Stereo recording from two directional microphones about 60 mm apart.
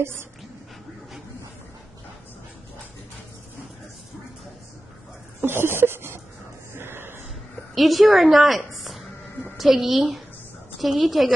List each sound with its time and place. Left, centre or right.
0.0 s speech: right
5.4 s a sound: right
7.7 s a woman's voice: centre